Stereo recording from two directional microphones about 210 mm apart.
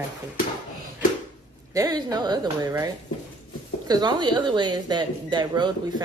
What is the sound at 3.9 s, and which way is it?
Speech, 20° right (ahead or behind).